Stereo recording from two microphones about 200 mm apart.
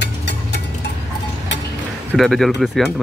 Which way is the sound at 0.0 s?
55° left (ahead or behind).